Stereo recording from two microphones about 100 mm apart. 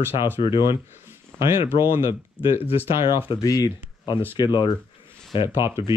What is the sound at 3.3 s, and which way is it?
Speech, 35° left (ahead or behind).